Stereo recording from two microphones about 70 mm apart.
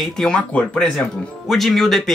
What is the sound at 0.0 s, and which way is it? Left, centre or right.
Speech, centre.